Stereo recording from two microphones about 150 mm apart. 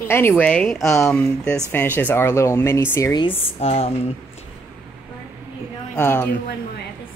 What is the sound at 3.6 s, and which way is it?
Speech, 40° left (ahead or behind).